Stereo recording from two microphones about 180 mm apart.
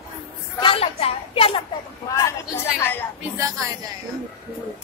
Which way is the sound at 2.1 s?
15° left (ahead or behind).